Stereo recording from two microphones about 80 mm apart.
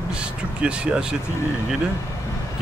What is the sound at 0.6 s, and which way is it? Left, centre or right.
Speech, centre.